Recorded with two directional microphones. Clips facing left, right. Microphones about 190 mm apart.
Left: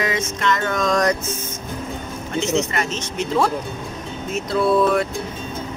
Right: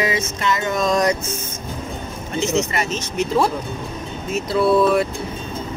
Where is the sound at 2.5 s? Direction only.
10° right (ahead or behind).